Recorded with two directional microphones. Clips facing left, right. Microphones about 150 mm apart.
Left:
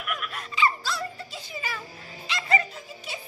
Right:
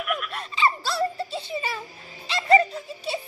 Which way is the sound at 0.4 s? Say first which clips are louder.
Left 1 dB; 30° right (ahead or behind).